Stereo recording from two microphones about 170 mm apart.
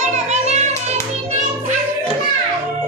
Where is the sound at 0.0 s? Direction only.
40° right (ahead or behind).